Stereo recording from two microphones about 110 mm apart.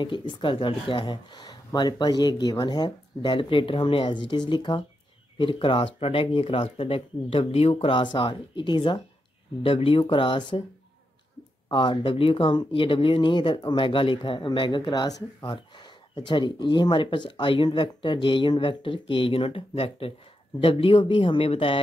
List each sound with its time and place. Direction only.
0.0 s speech: 45° left (ahead or behind)
11.7 s speech: 50° left (ahead or behind)